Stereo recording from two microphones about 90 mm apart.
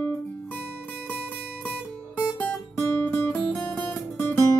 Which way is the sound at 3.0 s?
20° left (ahead or behind).